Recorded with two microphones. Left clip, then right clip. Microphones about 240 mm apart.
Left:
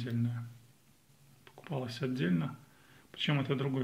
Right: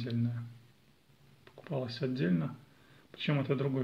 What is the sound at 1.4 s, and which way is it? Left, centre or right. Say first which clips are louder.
Speech: right 2 dB; centre.